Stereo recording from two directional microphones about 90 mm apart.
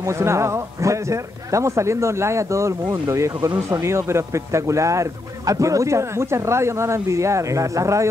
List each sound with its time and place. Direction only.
0.2 s speech: 30° right (ahead or behind)